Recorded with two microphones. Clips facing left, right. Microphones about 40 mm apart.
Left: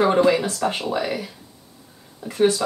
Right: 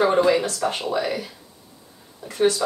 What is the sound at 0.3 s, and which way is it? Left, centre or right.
Speech, centre.